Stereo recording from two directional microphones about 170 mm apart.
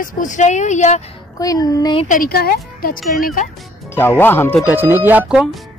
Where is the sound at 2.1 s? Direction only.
60° left (ahead or behind).